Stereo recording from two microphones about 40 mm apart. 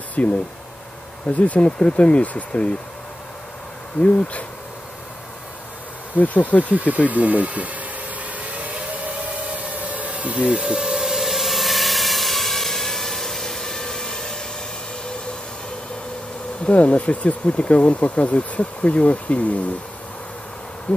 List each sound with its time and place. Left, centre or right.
0.2 s speech: left
4.0 s speech: left
6.1 s speech: left
6.6 s speech: right
7.1 s a sound: right
10.6 s vehicle: centre
16.6 s speech: left